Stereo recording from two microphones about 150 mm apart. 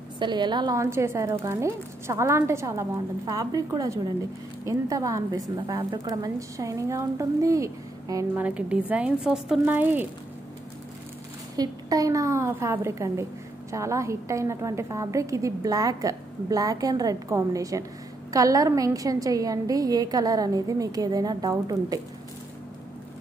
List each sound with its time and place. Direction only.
0.2 s a woman's voice: 30° right (ahead or behind)
8.5 s speech: 10° right (ahead or behind)
11.5 s a woman's voice: 25° right (ahead or behind)